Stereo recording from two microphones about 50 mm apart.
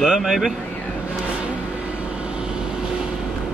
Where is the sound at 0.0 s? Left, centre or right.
Centre.